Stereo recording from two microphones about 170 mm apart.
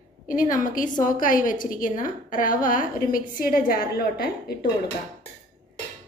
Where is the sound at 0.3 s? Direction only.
50° left (ahead or behind).